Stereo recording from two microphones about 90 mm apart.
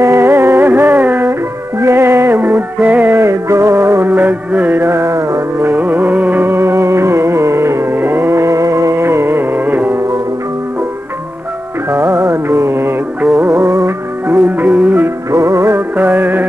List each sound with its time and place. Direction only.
0.0 s music: 30° right (ahead or behind)
3.2 s music: 35° right (ahead or behind)
4.1 s music: 20° right (ahead or behind)
5.7 s music: 20° right (ahead or behind)
11.9 s music: 30° right (ahead or behind)
14.4 s music: 15° right (ahead or behind)
15.3 s music: 35° right (ahead or behind)